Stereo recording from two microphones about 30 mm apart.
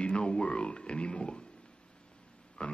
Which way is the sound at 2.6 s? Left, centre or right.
Left.